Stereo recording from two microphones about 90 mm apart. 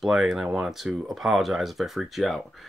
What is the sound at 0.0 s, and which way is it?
Speech, 5° right (ahead or behind).